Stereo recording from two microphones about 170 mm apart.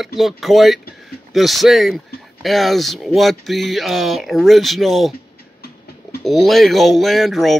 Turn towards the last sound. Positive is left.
turn(degrees=0)  # may be behind; listen again after turning